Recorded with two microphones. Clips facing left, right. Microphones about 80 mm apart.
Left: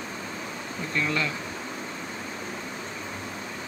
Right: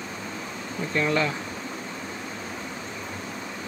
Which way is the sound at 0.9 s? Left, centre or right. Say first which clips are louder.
Right 4 dB; right.